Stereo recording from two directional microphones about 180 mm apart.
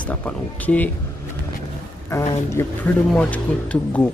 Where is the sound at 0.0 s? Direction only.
10° left (ahead or behind).